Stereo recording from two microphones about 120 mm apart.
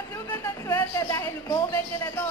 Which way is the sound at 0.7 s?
20° left (ahead or behind).